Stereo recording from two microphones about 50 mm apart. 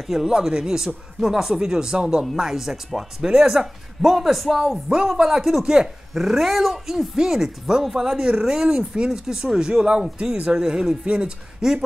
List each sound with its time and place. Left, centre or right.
0.0 s speech: centre